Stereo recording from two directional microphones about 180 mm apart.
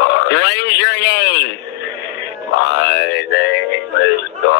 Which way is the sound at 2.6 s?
70° left (ahead or behind).